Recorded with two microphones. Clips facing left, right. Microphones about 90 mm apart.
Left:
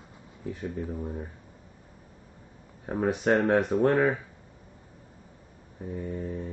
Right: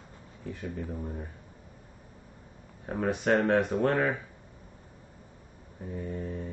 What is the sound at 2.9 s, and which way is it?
Speech, 15° left (ahead or behind).